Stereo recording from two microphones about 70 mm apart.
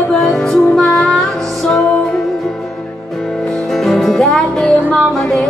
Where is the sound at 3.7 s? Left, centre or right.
Centre.